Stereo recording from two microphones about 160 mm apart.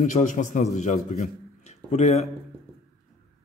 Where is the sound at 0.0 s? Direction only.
50° left (ahead or behind).